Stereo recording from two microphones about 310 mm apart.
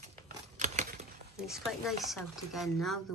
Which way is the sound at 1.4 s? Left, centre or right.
Centre.